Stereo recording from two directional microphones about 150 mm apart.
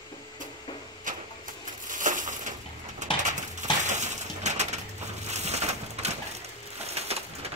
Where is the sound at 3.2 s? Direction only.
55° right (ahead or behind).